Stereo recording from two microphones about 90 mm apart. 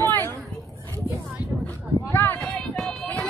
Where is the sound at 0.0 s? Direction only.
30° left (ahead or behind).